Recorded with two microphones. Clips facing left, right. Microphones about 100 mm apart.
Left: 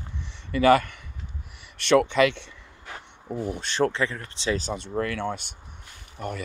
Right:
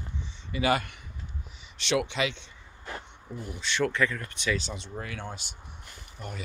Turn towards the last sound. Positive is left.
turn(degrees=50)  # may be behind; listen again after turning